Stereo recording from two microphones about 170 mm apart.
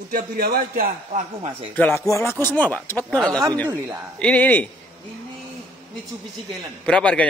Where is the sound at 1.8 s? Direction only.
15° left (ahead or behind).